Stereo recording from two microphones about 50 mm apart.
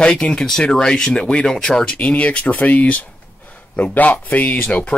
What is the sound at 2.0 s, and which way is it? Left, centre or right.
Speech, left.